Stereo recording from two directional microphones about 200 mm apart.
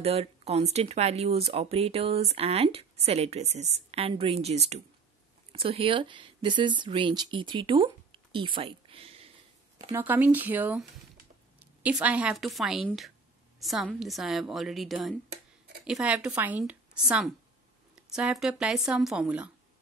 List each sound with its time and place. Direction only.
0.0 s speech: 30° right (ahead or behind)
9.9 s a woman's voice: 10° right (ahead or behind)